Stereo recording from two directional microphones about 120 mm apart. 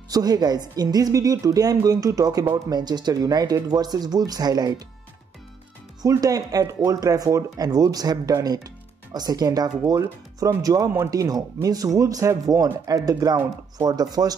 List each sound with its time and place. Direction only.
0.1 s speech: 30° right (ahead or behind)
6.0 s speech: 30° right (ahead or behind)